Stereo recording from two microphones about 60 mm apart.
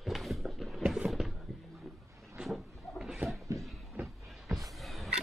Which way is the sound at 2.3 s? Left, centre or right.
Centre.